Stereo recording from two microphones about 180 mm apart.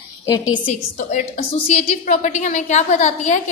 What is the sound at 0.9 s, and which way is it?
A woman's voice, 45° left (ahead or behind).